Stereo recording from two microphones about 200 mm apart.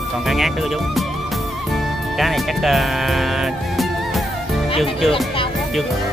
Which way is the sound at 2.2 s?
Centre (ahead or behind).